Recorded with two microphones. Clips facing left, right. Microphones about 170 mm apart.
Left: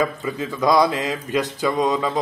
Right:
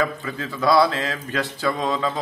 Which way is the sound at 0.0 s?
20° left (ahead or behind).